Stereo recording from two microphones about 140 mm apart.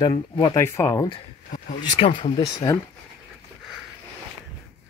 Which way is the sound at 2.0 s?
40° left (ahead or behind).